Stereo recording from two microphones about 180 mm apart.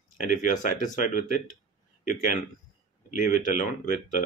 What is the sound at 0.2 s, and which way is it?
Speech, 45° left (ahead or behind).